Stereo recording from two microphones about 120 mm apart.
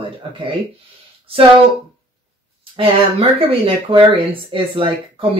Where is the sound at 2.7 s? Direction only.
50° right (ahead or behind).